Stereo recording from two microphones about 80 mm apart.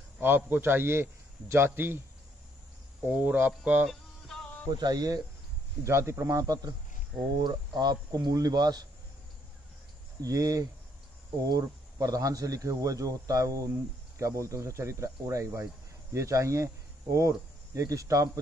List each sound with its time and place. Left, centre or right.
0.5 s speech: right
3.1 s speech: centre
3.9 s music: centre
4.6 s speech: right
5.9 s speech: right
7.3 s speech: right
10.2 s speech: right